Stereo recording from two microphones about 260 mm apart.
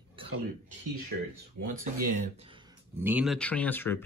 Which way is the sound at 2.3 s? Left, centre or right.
Centre.